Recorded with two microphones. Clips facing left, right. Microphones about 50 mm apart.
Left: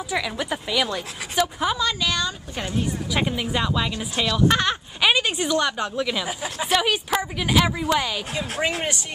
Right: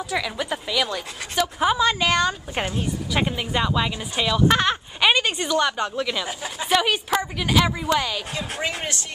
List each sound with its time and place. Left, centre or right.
0.0 s speech: centre
1.4 s speech: centre
1.8 s speech: right
3.1 s speech: centre